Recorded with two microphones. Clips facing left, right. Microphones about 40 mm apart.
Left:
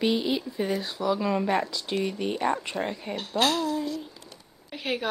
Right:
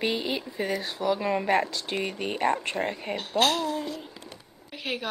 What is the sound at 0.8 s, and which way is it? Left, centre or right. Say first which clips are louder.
Speech: even; right.